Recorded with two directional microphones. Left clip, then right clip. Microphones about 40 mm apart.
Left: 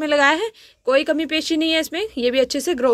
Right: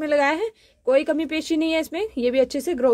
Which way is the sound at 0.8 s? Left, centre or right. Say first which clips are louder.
Left 2 dB; right.